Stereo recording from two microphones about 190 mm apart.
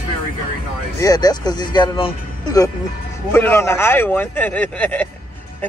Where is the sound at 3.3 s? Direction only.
10° left (ahead or behind).